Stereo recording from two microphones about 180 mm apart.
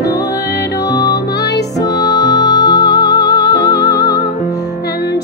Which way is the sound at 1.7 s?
20° left (ahead or behind).